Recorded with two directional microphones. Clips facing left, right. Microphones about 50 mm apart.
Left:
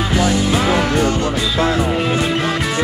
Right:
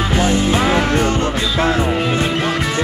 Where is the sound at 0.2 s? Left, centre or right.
Right.